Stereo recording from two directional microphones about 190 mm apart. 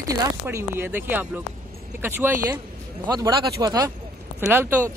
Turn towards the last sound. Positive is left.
turn(degrees=-10)  # may be behind; listen again after turning